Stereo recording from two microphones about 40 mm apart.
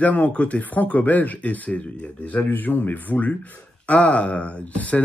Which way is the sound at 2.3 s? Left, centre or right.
Left.